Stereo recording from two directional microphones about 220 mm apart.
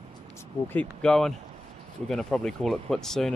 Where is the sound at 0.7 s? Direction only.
5° left (ahead or behind).